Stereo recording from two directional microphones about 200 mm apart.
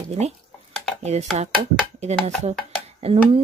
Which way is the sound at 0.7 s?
5° left (ahead or behind).